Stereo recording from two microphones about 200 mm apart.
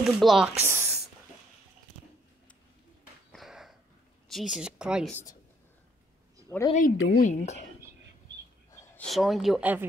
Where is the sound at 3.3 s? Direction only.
Centre (ahead or behind).